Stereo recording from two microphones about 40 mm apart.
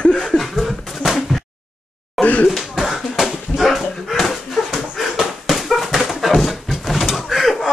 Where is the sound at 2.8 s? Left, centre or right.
Centre.